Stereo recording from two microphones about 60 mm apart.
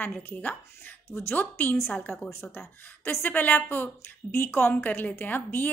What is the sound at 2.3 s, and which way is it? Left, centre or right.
A woman's voice, left.